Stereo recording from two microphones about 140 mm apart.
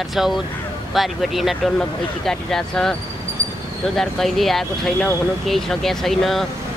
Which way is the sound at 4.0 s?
Centre (ahead or behind).